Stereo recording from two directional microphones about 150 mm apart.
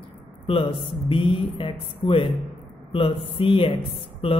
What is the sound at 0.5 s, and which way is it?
Speech, 35° left (ahead or behind).